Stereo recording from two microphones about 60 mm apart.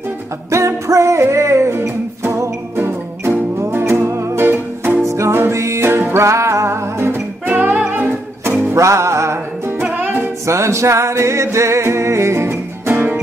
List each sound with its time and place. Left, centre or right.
0.5 s music: right
5.0 s music: right
7.4 s music: right
8.7 s music: right
9.9 s music: right
10.4 s music: right
12.9 s music: right